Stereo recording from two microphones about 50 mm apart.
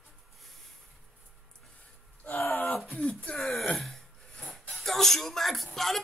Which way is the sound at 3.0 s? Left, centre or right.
Left.